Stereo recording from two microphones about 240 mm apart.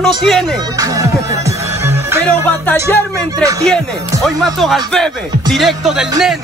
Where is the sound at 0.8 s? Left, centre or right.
Centre.